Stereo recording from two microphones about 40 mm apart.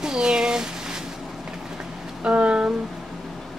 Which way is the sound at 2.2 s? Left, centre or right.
Right.